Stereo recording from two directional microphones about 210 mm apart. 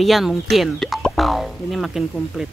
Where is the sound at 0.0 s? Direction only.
Centre (ahead or behind).